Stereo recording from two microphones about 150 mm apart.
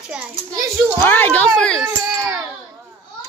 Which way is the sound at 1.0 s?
15° left (ahead or behind).